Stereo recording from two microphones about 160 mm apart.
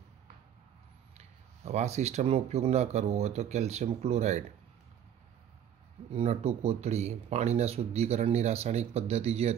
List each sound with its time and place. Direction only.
1.1 s speech: 45° right (ahead or behind)
6.1 s speech: 40° right (ahead or behind)